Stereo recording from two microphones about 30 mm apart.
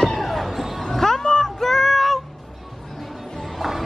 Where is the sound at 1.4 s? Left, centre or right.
Centre.